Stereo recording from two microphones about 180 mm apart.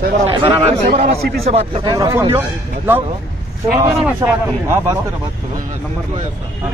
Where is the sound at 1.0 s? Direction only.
60° right (ahead or behind).